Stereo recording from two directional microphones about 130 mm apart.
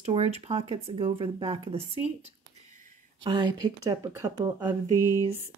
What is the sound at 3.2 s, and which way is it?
Speech, 35° right (ahead or behind).